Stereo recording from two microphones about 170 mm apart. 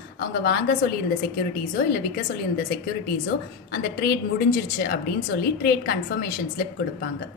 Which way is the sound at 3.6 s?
65° left (ahead or behind).